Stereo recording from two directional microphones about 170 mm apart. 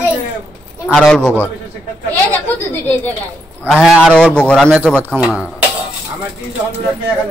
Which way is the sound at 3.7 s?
Centre (ahead or behind).